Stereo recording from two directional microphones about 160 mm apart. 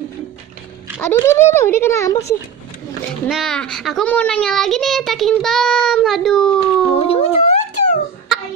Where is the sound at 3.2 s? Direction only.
Centre (ahead or behind).